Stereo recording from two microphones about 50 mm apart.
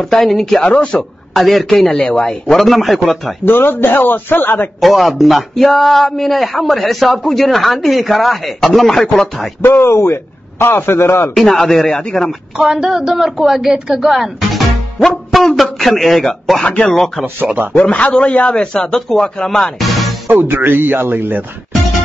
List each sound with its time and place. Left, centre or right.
0.0 s speech: centre
0.6 s speech: centre
1.3 s speech: centre
2.4 s speech: centre
3.4 s a man's voice: left
4.7 s speech: centre
9.6 s a man's voice: left
11.3 s speech: centre
12.5 s speech: centre
15.0 s speech: centre
17.7 s a man's voice: left
19.8 s music: centre
20.2 s speech: right